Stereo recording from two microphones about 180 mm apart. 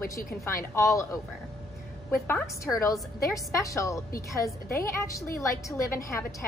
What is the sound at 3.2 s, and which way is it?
A woman's voice, 20° left (ahead or behind).